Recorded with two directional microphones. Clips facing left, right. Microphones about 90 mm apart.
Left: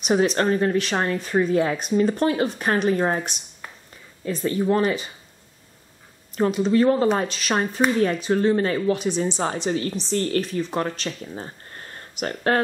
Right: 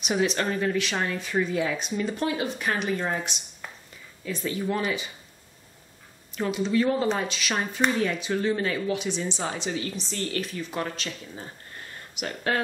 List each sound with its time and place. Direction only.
0.0 s speech: 40° left (ahead or behind)
6.3 s a woman's voice: 40° left (ahead or behind)